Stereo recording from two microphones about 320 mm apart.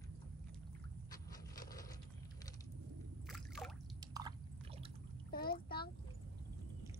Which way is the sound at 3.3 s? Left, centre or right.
Centre.